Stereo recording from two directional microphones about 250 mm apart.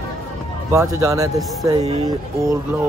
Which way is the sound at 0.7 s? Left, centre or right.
Centre.